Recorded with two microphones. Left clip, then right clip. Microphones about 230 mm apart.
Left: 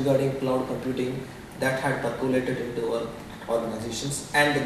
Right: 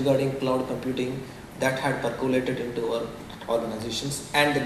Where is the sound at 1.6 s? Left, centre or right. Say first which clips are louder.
Even; centre.